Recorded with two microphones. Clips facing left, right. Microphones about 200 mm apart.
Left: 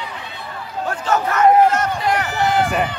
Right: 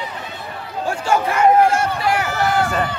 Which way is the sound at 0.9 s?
10° right (ahead or behind).